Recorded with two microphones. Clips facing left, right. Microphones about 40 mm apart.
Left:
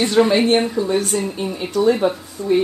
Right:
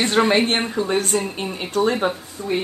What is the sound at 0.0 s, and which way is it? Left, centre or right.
A woman's voice, right.